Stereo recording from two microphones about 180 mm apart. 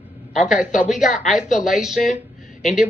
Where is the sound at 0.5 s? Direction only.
45° left (ahead or behind).